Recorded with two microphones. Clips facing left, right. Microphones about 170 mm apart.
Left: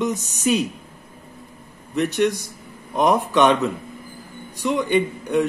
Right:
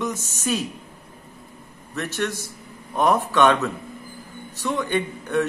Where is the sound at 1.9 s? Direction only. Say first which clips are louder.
Left 7 dB; 15° left (ahead or behind).